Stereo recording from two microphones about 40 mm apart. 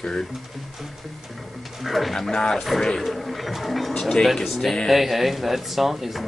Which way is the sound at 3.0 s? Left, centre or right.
Centre.